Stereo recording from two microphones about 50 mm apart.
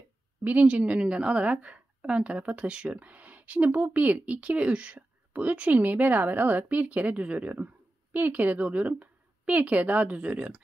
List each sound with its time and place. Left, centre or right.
0.4 s a woman's voice: right